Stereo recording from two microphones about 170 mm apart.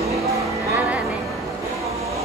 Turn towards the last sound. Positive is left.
turn(degrees=-10)  # may be behind; listen again after turning